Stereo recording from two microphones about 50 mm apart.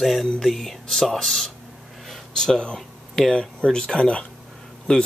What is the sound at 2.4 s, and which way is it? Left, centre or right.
Speech, centre.